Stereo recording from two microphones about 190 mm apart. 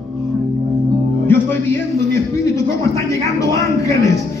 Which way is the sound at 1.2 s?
10° left (ahead or behind).